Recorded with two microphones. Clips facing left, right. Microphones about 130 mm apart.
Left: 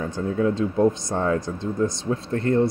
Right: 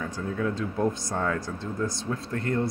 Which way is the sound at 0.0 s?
25° left (ahead or behind).